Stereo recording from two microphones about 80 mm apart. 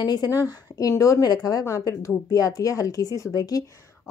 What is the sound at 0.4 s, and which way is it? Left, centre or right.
A woman's voice, left.